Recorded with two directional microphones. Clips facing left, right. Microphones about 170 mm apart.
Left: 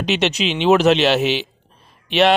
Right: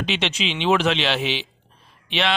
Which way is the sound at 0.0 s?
45° left (ahead or behind).